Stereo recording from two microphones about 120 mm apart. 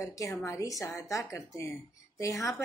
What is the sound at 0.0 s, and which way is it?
Speech, 25° left (ahead or behind).